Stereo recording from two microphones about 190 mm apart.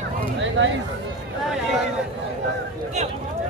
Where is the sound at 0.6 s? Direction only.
75° right (ahead or behind).